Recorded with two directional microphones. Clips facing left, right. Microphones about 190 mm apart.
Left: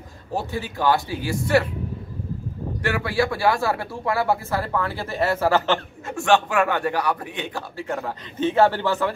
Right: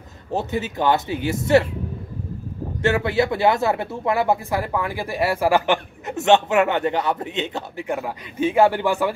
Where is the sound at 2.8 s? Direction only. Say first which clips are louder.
Right 4 dB; 25° right (ahead or behind).